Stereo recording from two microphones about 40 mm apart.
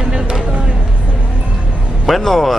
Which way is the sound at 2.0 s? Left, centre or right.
Centre.